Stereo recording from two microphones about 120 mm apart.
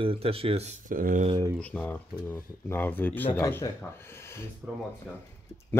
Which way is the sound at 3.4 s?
25° left (ahead or behind).